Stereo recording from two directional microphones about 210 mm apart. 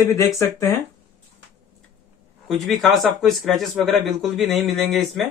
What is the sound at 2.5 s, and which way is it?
Speech, centre (ahead or behind).